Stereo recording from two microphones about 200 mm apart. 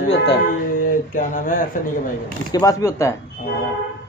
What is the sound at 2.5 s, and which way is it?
Speech, 20° left (ahead or behind).